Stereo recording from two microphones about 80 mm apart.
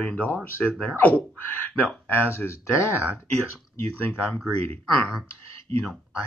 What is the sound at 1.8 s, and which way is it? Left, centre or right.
Speech, left.